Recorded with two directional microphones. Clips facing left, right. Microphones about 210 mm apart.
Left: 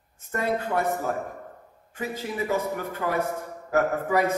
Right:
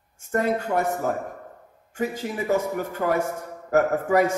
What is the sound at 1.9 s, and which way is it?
A man's voice, 50° right (ahead or behind).